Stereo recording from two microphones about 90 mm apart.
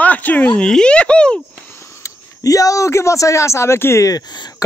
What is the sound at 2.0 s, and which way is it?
Speech, 40° left (ahead or behind).